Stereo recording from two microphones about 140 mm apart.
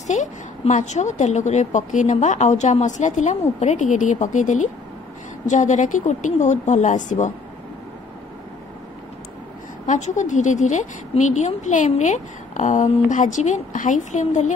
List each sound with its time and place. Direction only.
0.0 s a woman's voice: 60° left (ahead or behind)
9.8 s a woman's voice: 60° left (ahead or behind)